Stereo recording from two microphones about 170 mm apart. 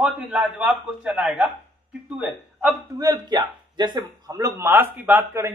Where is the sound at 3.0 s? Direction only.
25° right (ahead or behind).